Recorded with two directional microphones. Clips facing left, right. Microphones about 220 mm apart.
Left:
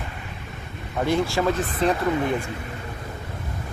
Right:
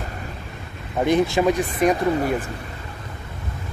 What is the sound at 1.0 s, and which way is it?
Speech, 20° right (ahead or behind).